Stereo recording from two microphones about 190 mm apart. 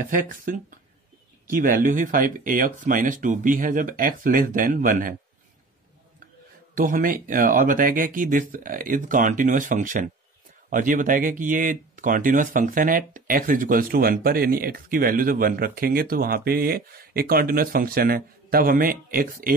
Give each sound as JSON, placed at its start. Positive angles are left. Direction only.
{"t": 0.0, "sound": "speech", "side_deg": -45}
{"t": 6.7, "sound": "speech", "side_deg": -45}